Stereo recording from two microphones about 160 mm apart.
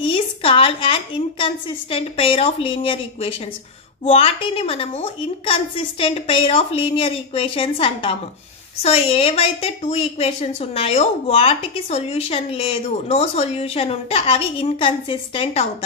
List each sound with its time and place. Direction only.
0.0 s a woman's voice: 35° left (ahead or behind)